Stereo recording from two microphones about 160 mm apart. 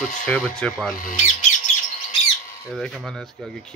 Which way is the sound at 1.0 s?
50° left (ahead or behind).